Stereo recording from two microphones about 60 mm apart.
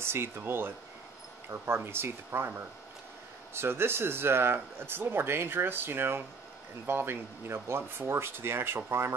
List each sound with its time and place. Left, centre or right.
0.0 s speech: right
1.9 s speech: right